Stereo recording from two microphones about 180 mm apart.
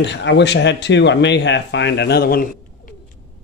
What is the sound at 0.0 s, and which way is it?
Speech, 75° left (ahead or behind).